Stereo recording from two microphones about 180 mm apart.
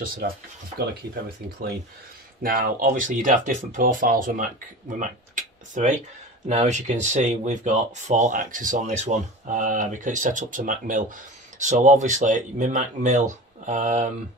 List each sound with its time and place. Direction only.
0.0 s speech: 50° right (ahead or behind)
2.4 s speech: 55° right (ahead or behind)